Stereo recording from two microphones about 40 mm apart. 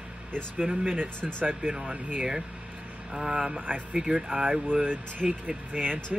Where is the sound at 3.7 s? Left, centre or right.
Right.